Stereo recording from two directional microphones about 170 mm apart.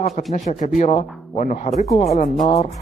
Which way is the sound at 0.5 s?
40° left (ahead or behind).